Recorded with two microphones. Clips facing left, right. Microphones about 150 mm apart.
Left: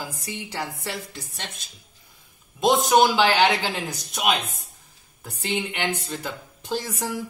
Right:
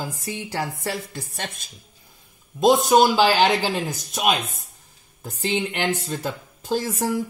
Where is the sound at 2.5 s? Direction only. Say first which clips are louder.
Right 2 dB; 40° right (ahead or behind).